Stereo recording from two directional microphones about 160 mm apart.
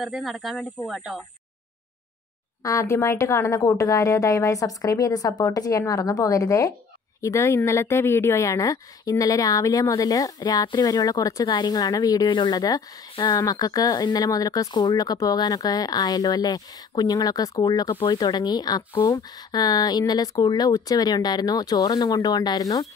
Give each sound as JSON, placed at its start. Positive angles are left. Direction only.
{"t": 0.0, "sound": "speech", "side_deg": 0}
{"t": 2.6, "sound": "speech", "side_deg": 20}